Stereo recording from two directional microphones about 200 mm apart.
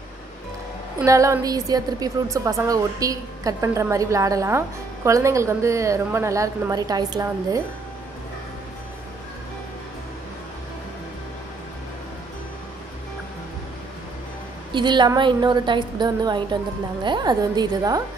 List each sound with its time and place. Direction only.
1.0 s a woman's voice: 15° right (ahead or behind)
14.7 s a woman's voice: 20° right (ahead or behind)